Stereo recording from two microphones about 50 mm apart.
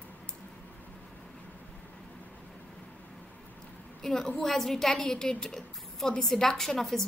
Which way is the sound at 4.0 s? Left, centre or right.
Centre.